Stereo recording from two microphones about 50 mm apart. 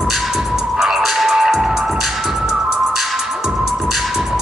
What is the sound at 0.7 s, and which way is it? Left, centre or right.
Music, centre.